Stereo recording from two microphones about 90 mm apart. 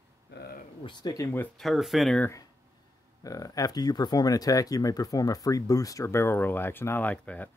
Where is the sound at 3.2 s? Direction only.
40° left (ahead or behind); by 7.5 s 15° left (ahead or behind).